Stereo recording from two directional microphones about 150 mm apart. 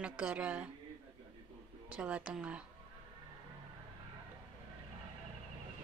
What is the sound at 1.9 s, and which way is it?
Speech, 10° right (ahead or behind).